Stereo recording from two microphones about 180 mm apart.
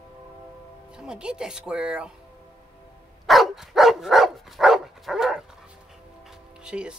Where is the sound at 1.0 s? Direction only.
5° right (ahead or behind).